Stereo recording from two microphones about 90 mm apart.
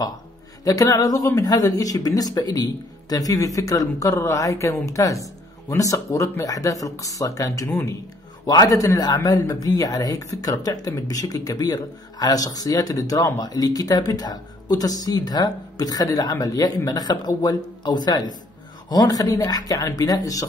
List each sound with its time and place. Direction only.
0.7 s a man's voice: 40° left (ahead or behind)